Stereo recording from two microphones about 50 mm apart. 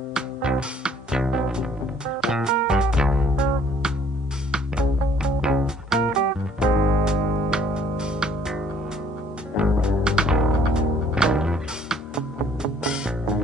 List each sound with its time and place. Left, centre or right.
0.1 s music: centre
9.6 s music: centre